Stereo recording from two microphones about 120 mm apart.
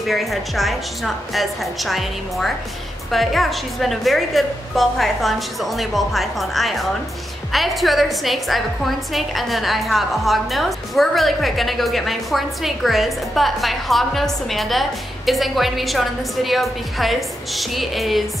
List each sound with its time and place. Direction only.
0.0 s a woman's voice: centre (ahead or behind)